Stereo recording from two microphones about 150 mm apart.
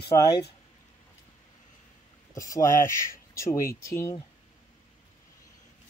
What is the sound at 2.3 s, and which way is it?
Speech, 20° left (ahead or behind).